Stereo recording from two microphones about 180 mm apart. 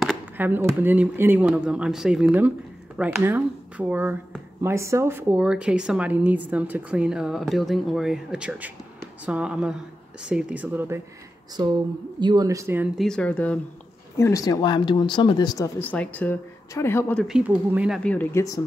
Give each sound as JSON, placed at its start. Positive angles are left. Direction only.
{"t": 0.0, "sound": "a woman's voice", "side_deg": -10}
{"t": 12.2, "sound": "speech", "side_deg": -25}
{"t": 12.9, "sound": "speech", "side_deg": 0}
{"t": 17.2, "sound": "a woman's voice", "side_deg": -5}
{"t": 18.1, "sound": "speech", "side_deg": 10}